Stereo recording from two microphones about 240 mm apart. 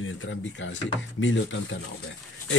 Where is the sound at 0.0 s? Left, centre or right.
Left.